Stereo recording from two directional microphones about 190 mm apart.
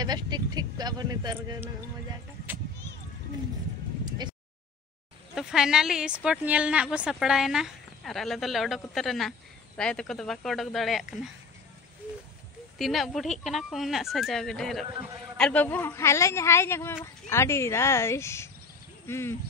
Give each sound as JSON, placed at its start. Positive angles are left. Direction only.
{"t": 0.0, "sound": "speech", "side_deg": -20}
{"t": 4.0, "sound": "vehicle", "side_deg": -20}
{"t": 5.3, "sound": "speech", "side_deg": -5}
{"t": 12.7, "sound": "a man's voice", "side_deg": 0}